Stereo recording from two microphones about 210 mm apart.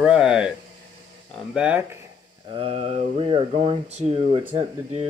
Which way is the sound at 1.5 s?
5° right (ahead or behind).